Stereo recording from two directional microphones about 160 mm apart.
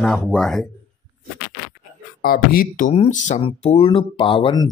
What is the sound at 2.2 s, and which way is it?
Speech, 65° left (ahead or behind).